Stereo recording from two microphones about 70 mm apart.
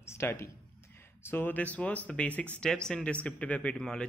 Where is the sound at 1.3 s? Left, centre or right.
Left.